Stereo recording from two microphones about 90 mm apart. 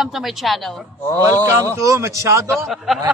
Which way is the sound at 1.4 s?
35° right (ahead or behind).